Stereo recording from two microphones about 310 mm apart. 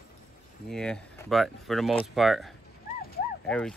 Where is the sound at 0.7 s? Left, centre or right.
Centre.